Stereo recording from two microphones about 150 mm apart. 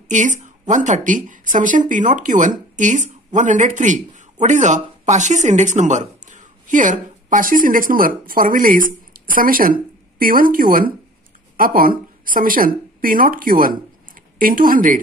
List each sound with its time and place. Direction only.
0.7 s speech: 55° right (ahead or behind)